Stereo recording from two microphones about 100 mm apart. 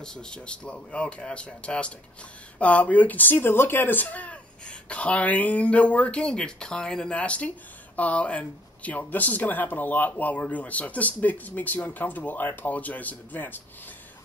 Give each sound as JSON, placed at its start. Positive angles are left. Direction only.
{"t": 0.0, "sound": "speech", "side_deg": 5}